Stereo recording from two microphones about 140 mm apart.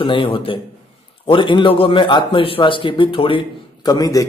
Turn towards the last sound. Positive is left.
turn(degrees=25)  # may be behind; listen again after turning